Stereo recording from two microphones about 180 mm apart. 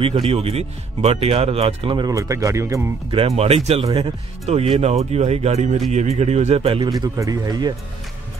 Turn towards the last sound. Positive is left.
turn(degrees=-20)  # may be behind; listen again after turning